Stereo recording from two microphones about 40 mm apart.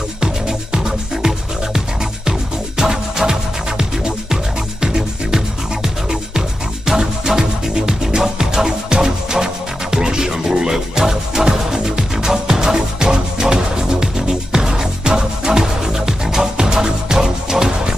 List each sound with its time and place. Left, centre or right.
0.2 s music: centre
2.8 s music: centre